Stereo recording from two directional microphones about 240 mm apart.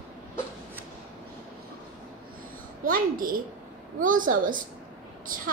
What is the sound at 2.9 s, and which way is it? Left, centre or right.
A woman's voice, right.